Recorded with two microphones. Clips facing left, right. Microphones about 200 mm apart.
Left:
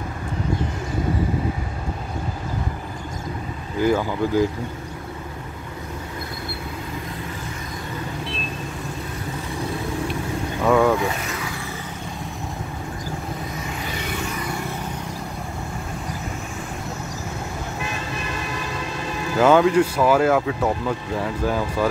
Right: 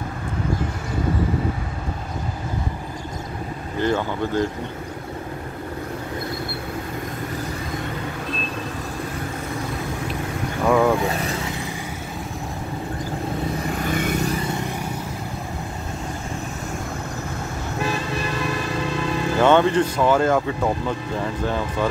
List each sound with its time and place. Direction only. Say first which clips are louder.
3.8 s speech: left 2 dB; 5° left (ahead or behind)
10.7 s vehicle: left 1 dB; centre (ahead or behind)
11.2 s vehicle: right 3 dB; 25° right (ahead or behind)
13.8 s vehicle: right 7 dB; 50° right (ahead or behind)
14.4 s vehicle: right 2 dB; 20° right (ahead or behind)
19.4 s speech: left 2 dB; 5° left (ahead or behind)